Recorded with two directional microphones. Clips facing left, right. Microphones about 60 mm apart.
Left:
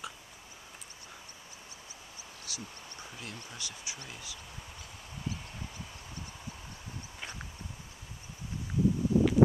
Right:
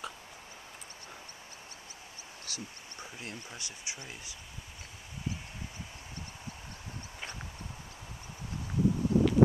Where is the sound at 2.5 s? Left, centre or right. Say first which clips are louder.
Right 1 dB; right.